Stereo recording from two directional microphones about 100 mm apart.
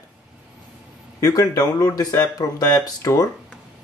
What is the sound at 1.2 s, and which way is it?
Speech, 35° left (ahead or behind).